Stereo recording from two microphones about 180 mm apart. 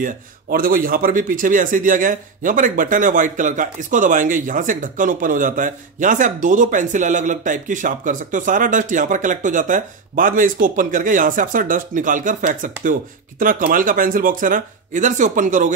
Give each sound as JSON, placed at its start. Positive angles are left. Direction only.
{"t": 0.0, "sound": "speech", "side_deg": -50}